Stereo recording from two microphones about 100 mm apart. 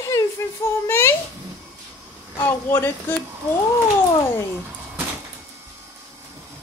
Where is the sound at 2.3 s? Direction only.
25° left (ahead or behind).